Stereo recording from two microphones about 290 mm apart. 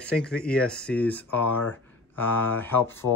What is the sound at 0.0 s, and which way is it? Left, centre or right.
Speech, centre.